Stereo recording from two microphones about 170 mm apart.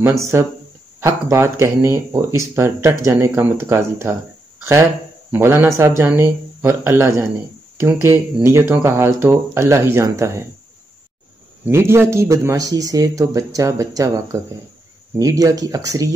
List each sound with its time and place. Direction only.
0.0 s speech: 15° right (ahead or behind)
5.3 s speech: 10° right (ahead or behind)
11.6 s speech: 15° right (ahead or behind)